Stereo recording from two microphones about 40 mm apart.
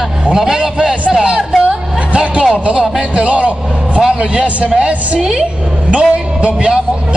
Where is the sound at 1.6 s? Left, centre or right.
Right.